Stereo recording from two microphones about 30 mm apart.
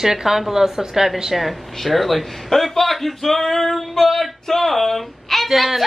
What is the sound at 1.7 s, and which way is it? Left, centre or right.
A woman's voice, centre.